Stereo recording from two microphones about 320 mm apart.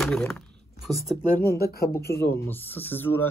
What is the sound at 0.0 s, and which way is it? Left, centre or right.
Speech, centre.